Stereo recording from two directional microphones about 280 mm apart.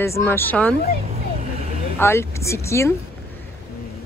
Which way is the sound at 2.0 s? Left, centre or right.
Centre.